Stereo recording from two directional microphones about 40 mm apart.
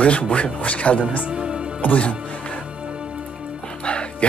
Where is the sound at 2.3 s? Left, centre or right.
Left.